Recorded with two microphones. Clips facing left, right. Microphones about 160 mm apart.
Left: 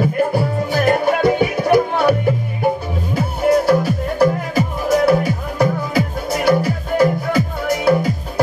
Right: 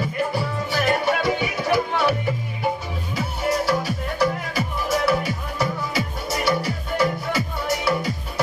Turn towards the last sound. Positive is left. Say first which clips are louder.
# left 7 dB
turn(degrees=50)  # may be behind; listen again after turning